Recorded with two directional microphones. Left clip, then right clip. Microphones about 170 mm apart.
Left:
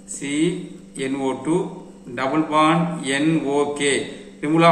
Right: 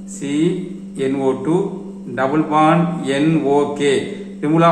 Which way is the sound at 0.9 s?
25° right (ahead or behind).